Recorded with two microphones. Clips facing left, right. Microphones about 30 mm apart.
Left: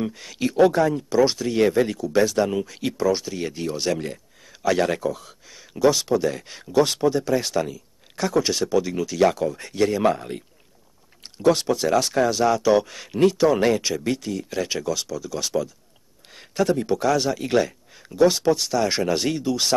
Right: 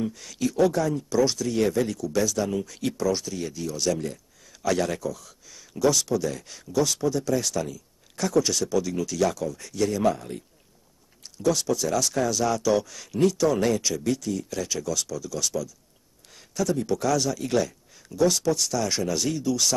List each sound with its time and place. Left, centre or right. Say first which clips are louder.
0.0 s speech: left 2 dB; left
2.6 s speech: left 3 dB; left
16.3 s a sound: left 5 dB; left
16.9 s speech: left 3 dB; left